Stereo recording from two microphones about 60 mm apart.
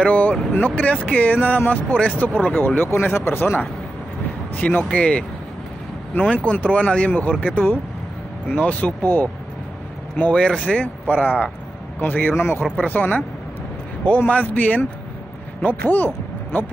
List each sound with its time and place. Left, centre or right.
0.0 s speech: left
6.2 s speech: left
10.3 s speech: centre; by 12.6 s left
12.7 s speech: left